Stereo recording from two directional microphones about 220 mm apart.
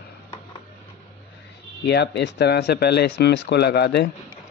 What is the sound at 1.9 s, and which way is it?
Speech, 50° left (ahead or behind).